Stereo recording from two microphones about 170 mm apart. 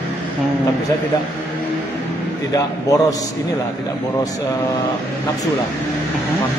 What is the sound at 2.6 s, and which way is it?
Speech, 20° left (ahead or behind).